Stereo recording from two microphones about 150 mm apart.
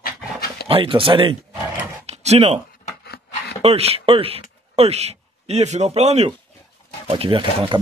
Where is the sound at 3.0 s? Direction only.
90° left.